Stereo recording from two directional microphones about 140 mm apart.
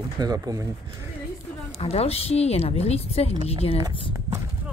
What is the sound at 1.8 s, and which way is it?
Speech, 45° left (ahead or behind).